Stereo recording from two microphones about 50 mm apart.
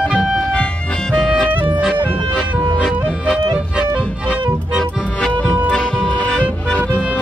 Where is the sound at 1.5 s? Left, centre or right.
Right.